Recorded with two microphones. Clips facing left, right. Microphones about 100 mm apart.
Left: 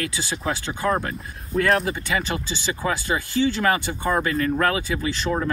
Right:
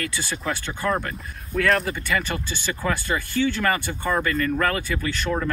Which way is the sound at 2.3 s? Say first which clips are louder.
Left 2 dB; 25° left (ahead or behind).